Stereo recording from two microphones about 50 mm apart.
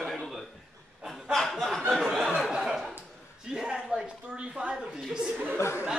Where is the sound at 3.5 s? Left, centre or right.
Centre.